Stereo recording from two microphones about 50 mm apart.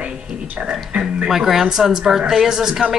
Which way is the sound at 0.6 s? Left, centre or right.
Centre.